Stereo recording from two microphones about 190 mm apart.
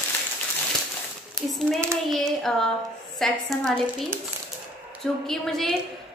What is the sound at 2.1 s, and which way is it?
A woman's voice, centre (ahead or behind).